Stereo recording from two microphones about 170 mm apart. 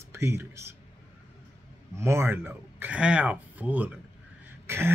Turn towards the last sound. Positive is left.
turn(degrees=-15)  # may be behind; listen again after turning